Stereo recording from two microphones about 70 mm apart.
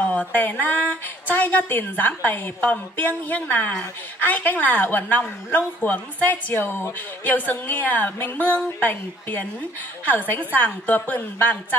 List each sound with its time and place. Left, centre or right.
0.0 s a woman's voice: left